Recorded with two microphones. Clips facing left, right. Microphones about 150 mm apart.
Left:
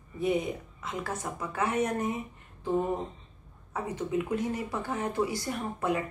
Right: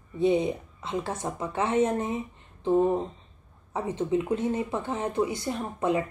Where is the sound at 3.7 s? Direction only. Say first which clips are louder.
Right 5 dB; 25° right (ahead or behind).